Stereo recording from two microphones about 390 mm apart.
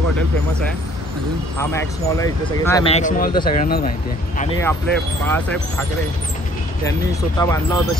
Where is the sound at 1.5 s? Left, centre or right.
Centre.